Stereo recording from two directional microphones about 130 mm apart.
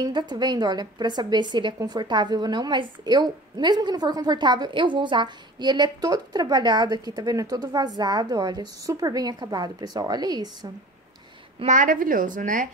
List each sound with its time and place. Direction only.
0.0 s a woman's voice: 35° right (ahead or behind)
11.6 s a woman's voice: 80° right